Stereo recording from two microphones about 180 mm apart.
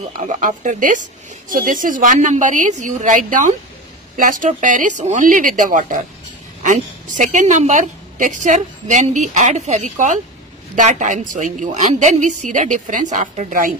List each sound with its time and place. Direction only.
0.4 s a woman's voice: 45° right (ahead or behind)